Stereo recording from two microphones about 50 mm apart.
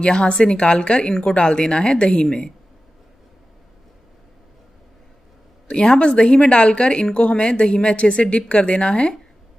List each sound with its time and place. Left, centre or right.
0.0 s a woman's voice: left
5.7 s a woman's voice: centre